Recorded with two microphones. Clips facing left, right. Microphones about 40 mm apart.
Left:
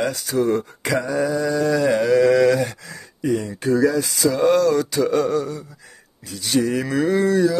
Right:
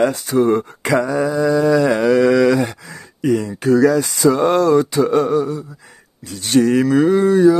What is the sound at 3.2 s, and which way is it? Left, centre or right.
Speech, right.